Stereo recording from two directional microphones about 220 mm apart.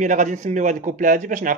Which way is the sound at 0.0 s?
35° right (ahead or behind).